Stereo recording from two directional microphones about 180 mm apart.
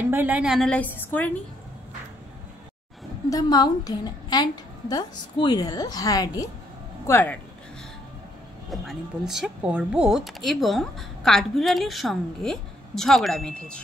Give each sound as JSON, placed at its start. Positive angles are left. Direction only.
{"t": 0.0, "sound": "a woman's voice", "side_deg": -10}
{"t": 0.7, "sound": "a woman's voice", "side_deg": 10}
{"t": 3.3, "sound": "a woman's voice", "side_deg": 20}
{"t": 8.6, "sound": "speech", "side_deg": 0}